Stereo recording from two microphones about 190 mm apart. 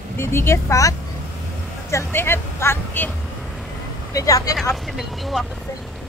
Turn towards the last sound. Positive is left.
turn(degrees=0)  # may be behind; listen again after turning